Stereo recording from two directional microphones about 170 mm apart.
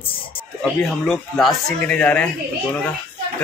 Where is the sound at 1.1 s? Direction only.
Centre (ahead or behind).